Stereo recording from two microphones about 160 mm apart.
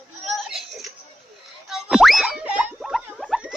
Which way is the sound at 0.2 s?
Centre (ahead or behind).